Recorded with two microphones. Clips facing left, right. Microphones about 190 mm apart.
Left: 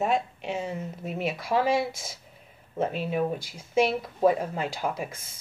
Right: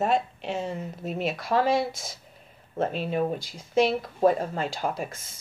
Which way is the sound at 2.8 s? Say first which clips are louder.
Right 1 dB; 10° left (ahead or behind).